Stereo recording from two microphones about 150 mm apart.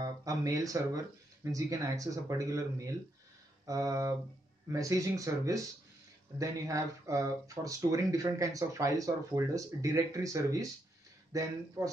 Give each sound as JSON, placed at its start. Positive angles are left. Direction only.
{"t": 0.0, "sound": "speech", "side_deg": -25}